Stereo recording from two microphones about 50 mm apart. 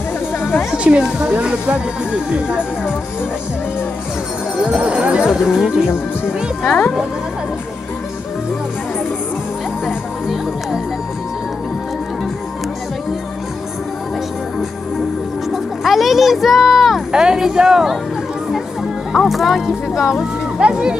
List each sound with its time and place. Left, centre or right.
0.4 s a sound: left
1.2 s speech: centre
4.6 s speech: centre
5.3 s speech: centre
6.6 s speech: left
9.8 s music: centre
15.5 s a sound: centre
17.1 s speech: centre
19.2 s speech: centre
20.5 s speech: centre